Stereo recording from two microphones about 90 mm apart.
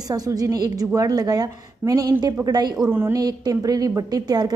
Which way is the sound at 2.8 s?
25° right (ahead or behind).